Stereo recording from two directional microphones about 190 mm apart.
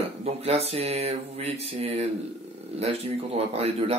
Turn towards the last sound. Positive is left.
turn(degrees=-30)  # may be behind; listen again after turning